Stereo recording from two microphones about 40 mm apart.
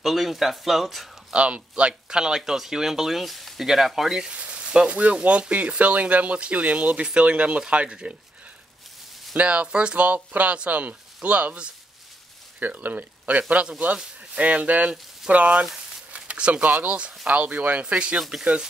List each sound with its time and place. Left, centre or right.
0.0 s speech: centre
1.3 s speech: right; by 4.3 s centre
4.3 s sizzle: right
5.5 s speech: right
9.3 s speech: right
9.9 s speech: right
12.5 s speech: right
13.2 s speech: right
16.1 s a sound: right
16.6 s speech: right
18.3 s speech: centre